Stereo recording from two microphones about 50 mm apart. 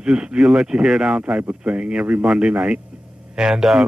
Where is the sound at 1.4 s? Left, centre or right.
Right.